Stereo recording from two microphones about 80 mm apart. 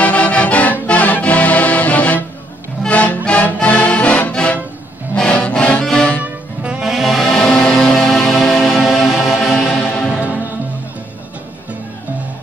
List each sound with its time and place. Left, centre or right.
0.0 s music: centre
6.2 s saxophone: centre
6.9 s music: centre